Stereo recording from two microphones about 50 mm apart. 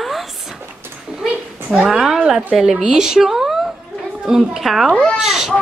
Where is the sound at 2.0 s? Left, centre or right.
Centre.